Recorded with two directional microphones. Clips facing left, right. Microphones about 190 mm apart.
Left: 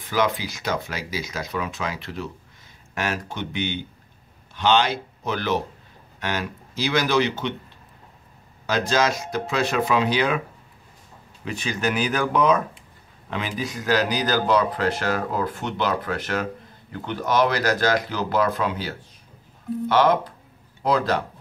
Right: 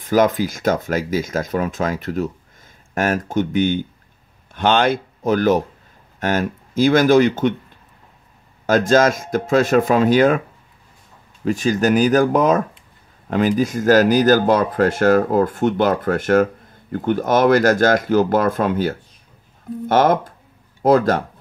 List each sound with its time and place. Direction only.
0.0 s speech: 45° right (ahead or behind)
8.6 s speech: 50° right (ahead or behind)
11.4 s speech: 45° right (ahead or behind)